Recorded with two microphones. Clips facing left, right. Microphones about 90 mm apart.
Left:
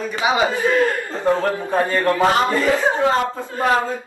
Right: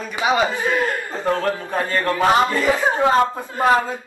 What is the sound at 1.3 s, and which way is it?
Speech, 15° left (ahead or behind).